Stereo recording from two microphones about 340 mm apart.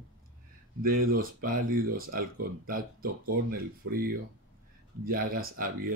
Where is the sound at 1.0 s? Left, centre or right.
Right.